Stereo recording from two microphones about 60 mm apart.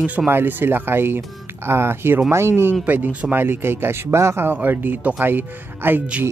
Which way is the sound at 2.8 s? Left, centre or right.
Right.